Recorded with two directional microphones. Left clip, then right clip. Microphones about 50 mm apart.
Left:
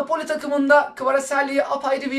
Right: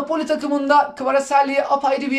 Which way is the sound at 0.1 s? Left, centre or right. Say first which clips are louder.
Right 5 dB; right.